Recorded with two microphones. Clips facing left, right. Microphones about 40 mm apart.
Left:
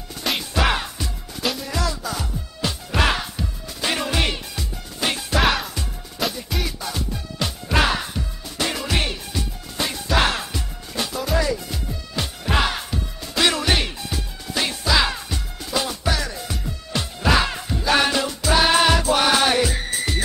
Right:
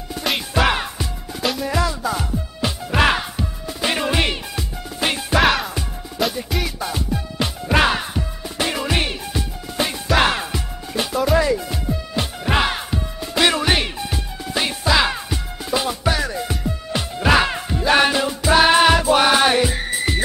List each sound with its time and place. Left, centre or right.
0.2 s music: centre
0.7 s music: centre
1.4 s music: centre
1.7 s music: centre
5.4 s music: centre
6.8 s music: centre